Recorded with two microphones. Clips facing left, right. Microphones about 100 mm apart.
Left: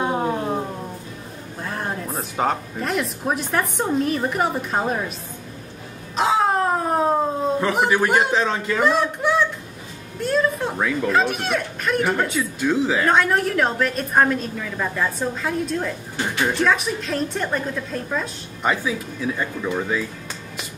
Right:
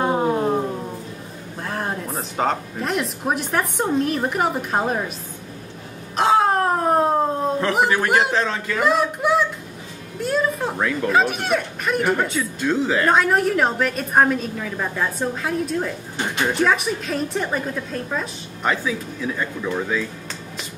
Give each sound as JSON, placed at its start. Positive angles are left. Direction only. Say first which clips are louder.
{"t": 0.0, "sound": "a sound", "louder": "right 3 dB", "side_deg": 0}
{"t": 1.6, "sound": "a woman's voice", "louder": "right 1 dB", "side_deg": 0}
{"t": 6.1, "sound": "a sound", "louder": "right 2 dB", "side_deg": 0}
{"t": 7.3, "sound": "a man's voice", "louder": "right 1 dB", "side_deg": 0}
{"t": 8.3, "sound": "speech", "louder": "left 1 dB", "side_deg": 15}
{"t": 8.7, "sound": "speech", "louder": "right 1 dB", "side_deg": -5}